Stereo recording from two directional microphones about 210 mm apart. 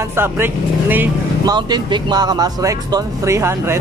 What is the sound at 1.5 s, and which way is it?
Speech, 20° right (ahead or behind).